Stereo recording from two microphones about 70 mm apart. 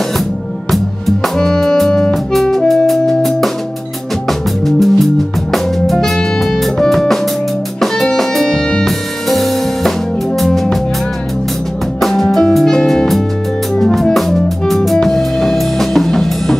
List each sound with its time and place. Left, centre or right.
0.7 s music: centre
12.0 s music: centre